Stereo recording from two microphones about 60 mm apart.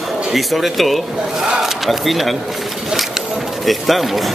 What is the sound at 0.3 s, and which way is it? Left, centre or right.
Speech, centre.